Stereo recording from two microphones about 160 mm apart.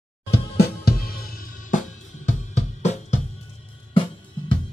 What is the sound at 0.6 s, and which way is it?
Music, 75° left (ahead or behind).